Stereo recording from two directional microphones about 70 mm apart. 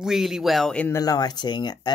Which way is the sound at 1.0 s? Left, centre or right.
Left.